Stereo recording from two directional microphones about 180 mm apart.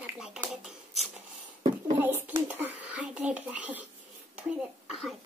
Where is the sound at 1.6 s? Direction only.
10° right (ahead or behind).